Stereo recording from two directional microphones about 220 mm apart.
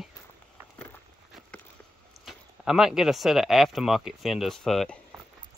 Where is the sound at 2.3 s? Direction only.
Centre (ahead or behind).